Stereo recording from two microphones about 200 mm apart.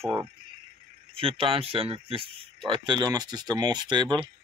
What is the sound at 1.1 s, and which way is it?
Speech, 25° right (ahead or behind).